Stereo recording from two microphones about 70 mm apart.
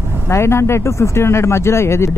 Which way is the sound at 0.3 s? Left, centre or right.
Left.